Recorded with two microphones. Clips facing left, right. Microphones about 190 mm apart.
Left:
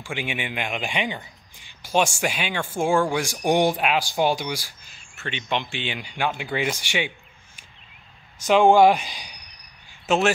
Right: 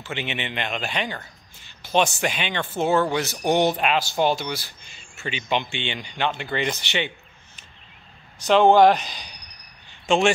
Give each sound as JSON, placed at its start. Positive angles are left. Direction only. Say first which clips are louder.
{"t": 0.0, "sound": "speech", "louder": "even", "side_deg": 10}
{"t": 8.5, "sound": "speech", "louder": "even", "side_deg": 10}